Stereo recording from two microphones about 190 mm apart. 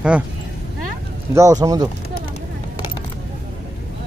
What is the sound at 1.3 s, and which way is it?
Speech, 15° right (ahead or behind).